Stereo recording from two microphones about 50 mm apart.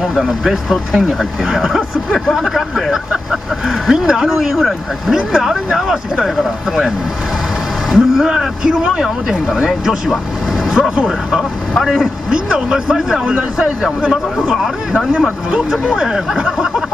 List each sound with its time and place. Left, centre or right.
0.0 s speech: centre
7.9 s speech: centre
10.8 s speech: centre
11.8 s a man's voice: centre
12.3 s speech: centre
15.7 s speech: centre